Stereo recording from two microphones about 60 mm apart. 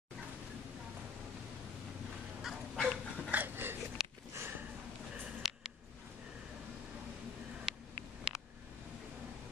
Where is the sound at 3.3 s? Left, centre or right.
Right.